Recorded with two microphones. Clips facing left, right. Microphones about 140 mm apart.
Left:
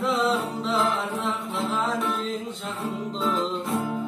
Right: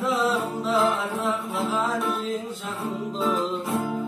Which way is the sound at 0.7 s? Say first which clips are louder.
Right 2 dB; centre (ahead or behind).